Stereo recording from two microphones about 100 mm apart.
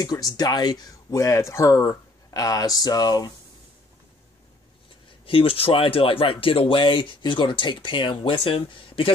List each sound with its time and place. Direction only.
0.0 s speech: 40° left (ahead or behind)
1.1 s speech: 30° left (ahead or behind)
5.2 s speech: 65° left (ahead or behind)